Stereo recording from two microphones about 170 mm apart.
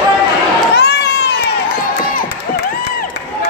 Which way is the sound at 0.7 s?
80° left.